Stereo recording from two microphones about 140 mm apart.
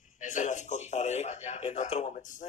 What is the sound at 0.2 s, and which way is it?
Speech, 60° left (ahead or behind).